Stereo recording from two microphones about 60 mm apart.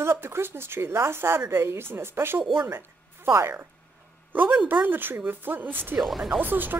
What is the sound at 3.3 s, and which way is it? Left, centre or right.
Speech, right.